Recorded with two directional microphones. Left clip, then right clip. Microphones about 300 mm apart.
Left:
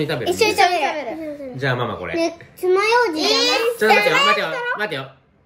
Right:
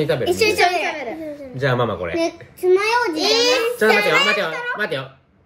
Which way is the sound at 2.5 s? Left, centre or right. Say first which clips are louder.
Left 1 dB; centre.